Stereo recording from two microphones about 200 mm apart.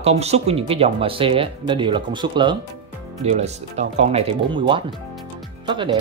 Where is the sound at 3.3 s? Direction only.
35° right (ahead or behind).